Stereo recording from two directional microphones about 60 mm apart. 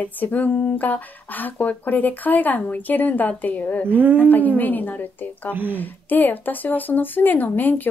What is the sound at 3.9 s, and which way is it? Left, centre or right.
Speech, right.